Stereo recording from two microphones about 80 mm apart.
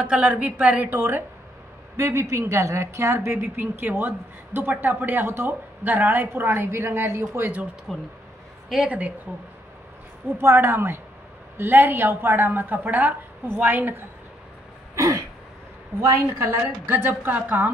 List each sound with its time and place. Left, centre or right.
0.0 s a woman's voice: centre
0.9 s a woman's voice: right
7.9 s speech: centre
8.8 s a woman's voice: centre
10.3 s a woman's voice: right
15.0 s throat clearing: right
16.0 s a woman's voice: right